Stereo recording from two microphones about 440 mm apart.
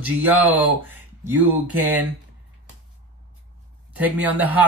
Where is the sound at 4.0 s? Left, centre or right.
Centre.